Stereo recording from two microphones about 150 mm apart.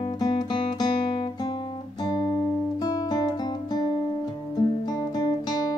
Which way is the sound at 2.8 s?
25° left (ahead or behind).